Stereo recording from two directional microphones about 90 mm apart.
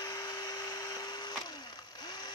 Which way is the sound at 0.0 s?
45° left (ahead or behind).